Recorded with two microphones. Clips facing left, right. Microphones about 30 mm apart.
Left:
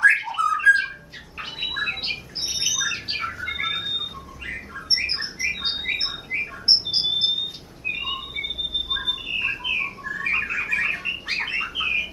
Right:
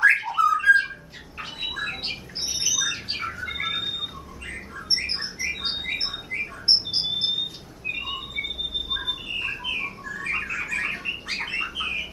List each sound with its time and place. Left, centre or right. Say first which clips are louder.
0.0 s bird: even; centre
1.4 s bird: left 3 dB; centre
3.3 s bird: left 1 dB; centre
4.5 s bird: left 2 dB; left